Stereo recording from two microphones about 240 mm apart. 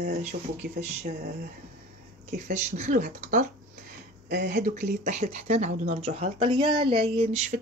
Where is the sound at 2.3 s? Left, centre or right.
Right.